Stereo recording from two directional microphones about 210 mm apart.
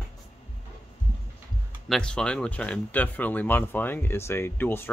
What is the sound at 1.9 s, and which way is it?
Speech, 5° left (ahead or behind).